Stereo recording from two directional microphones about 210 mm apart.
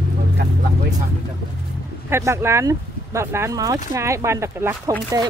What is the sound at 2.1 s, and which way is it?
Speech, 15° right (ahead or behind).